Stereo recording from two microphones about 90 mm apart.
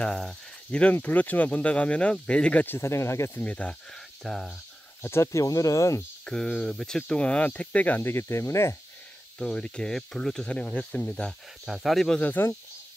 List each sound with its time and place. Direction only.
0.0 s speech: 5° left (ahead or behind)
2.6 s speech: 25° left (ahead or behind)
3.4 s speech: 15° left (ahead or behind)
5.0 s speech: 30° left (ahead or behind)
6.2 s speech: 10° left (ahead or behind)
8.0 s speech: 30° left (ahead or behind)
9.4 s speech: 10° left (ahead or behind)
11.6 s speech: 5° right (ahead or behind)
12.2 s speech: 20° left (ahead or behind)